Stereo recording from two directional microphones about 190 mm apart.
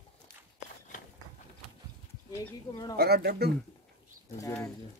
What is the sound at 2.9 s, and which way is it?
Speech, 55° right (ahead or behind).